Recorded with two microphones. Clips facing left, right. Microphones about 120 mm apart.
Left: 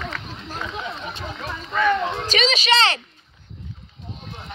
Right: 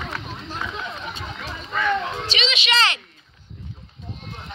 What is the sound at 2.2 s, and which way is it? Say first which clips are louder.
Speech: left 5 dB; 40° left (ahead or behind).